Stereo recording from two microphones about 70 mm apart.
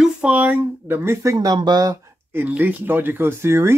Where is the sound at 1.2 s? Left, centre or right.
Right.